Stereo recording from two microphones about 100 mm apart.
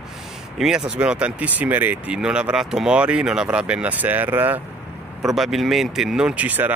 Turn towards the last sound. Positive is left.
turn(degrees=-15)  # may be behind; listen again after turning